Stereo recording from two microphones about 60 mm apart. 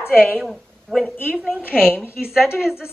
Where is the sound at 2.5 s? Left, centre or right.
Centre.